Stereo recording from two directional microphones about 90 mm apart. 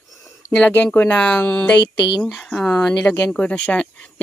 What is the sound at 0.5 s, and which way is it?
Speech, 15° left (ahead or behind).